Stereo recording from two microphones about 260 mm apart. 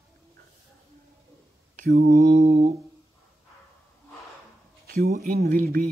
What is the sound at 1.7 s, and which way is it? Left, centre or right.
Speech, right.